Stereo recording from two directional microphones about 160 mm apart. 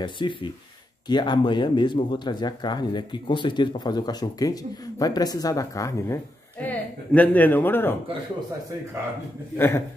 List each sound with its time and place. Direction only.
0.0 s speech: 30° left (ahead or behind); by 7.9 s 10° left (ahead or behind)
9.6 s a man's voice: 15° left (ahead or behind)